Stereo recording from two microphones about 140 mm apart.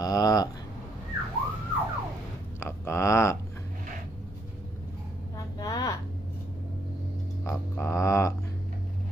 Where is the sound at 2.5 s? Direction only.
20° left (ahead or behind).